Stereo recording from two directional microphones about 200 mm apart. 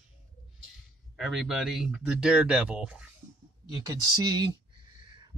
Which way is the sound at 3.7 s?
20° right (ahead or behind).